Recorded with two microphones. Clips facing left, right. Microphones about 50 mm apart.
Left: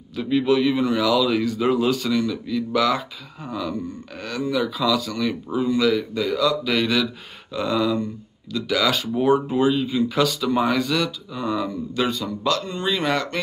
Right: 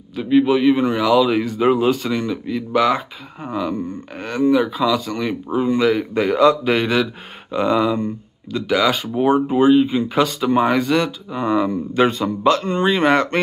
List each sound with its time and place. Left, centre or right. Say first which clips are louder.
0.1 s a man's voice: right 4 dB; centre
9.6 s speech: right 6 dB; right